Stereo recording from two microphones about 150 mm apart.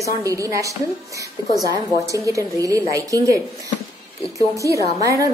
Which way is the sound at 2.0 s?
20° right (ahead or behind).